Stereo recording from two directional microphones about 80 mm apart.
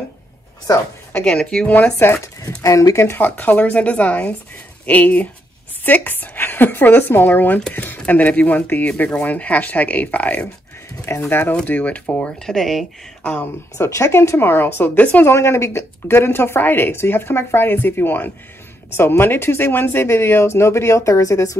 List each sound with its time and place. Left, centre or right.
1.1 s speech: centre
2.2 s speech: left
3.1 s speech: left
12.4 s speech: centre
13.7 s speech: left
15.3 s speech: left